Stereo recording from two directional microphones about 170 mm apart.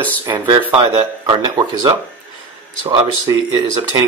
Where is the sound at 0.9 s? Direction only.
30° right (ahead or behind).